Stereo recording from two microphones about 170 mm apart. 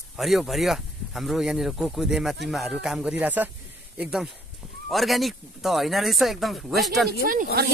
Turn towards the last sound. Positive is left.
turn(degrees=-60)  # may be behind; listen again after turning